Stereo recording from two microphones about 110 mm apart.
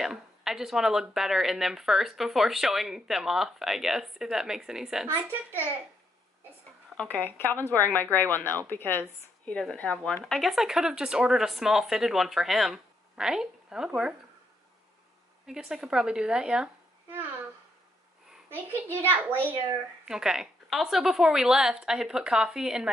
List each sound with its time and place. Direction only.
0.0 s speech: 5° right (ahead or behind)
5.0 s a child's voice: 20° right (ahead or behind)
7.0 s speech: 15° left (ahead or behind); by 14.1 s 5° right (ahead or behind)
15.4 s a woman's voice: 5° right (ahead or behind)
18.5 s a child's voice: 20° right (ahead or behind)
20.1 s speech: 5° right (ahead or behind)